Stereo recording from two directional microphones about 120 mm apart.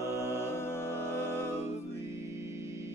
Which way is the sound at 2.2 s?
20° right (ahead or behind).